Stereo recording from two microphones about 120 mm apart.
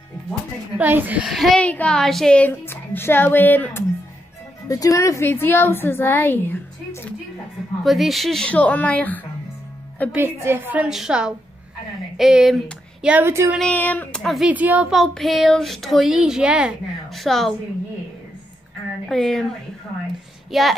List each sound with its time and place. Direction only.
0.7 s a woman's voice: 15° right (ahead or behind)
1.2 s speech: centre (ahead or behind)
1.6 s speech: 10° left (ahead or behind)
4.6 s a woman's voice: 30° left (ahead or behind)
7.8 s speech: centre (ahead or behind)
10.1 s a woman's voice: 20° right (ahead or behind)
10.9 s speech: 5° right (ahead or behind)
13.1 s speech: 20° right (ahead or behind)
13.6 s speech: 10° left (ahead or behind)
14.2 s speech: centre (ahead or behind)
14.5 s a woman's voice: 15° right (ahead or behind)
14.9 s speech: centre (ahead or behind)
19.0 s speech: 5° left (ahead or behind)
20.5 s speech: centre (ahead or behind)